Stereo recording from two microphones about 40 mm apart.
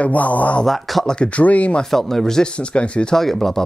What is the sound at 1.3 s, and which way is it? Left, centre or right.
Speech, left.